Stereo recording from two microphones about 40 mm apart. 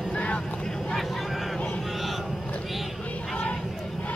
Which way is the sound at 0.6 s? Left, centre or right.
Centre.